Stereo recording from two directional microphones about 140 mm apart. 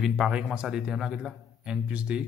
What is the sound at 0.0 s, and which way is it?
A man's voice, 5° right (ahead or behind).